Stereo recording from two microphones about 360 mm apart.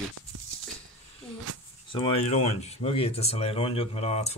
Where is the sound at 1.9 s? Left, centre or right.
Centre.